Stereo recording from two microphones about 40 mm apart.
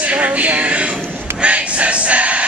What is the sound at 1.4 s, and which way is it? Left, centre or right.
Choir, right.